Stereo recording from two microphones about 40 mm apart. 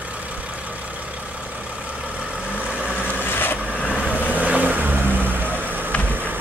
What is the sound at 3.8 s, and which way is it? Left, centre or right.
Vehicle, left.